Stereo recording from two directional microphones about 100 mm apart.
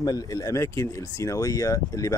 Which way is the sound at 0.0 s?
35° left (ahead or behind).